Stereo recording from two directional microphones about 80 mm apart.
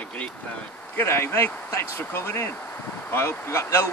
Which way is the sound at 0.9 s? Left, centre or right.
Left.